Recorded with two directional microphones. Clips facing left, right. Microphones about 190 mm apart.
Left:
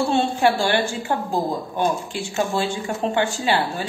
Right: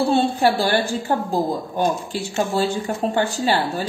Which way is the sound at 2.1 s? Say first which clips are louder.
Right 2 dB; 40° right (ahead or behind).